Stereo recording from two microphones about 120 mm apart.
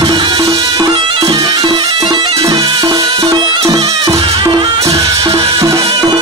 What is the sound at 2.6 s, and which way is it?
Music, 40° right (ahead or behind).